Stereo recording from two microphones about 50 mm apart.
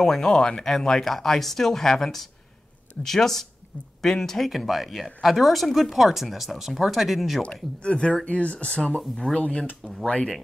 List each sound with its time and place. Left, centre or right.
0.0 s speech: centre
7.8 s speech: centre